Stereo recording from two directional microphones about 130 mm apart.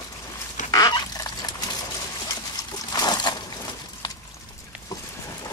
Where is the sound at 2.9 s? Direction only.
30° left (ahead or behind).